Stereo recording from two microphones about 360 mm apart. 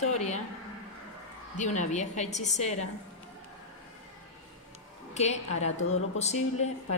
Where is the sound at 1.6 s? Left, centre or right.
Centre.